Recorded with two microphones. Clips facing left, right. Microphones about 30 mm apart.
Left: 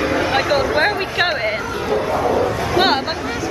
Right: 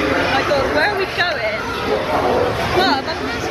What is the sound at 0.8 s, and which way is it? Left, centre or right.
Speech, centre.